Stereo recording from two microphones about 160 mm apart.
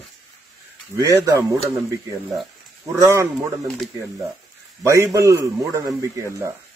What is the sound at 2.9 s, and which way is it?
Speech, 15° right (ahead or behind).